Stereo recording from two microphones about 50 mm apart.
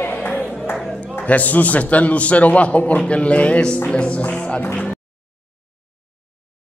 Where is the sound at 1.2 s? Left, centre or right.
Left.